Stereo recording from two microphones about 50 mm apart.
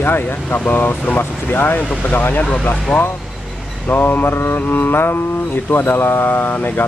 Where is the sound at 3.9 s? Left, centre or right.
Left.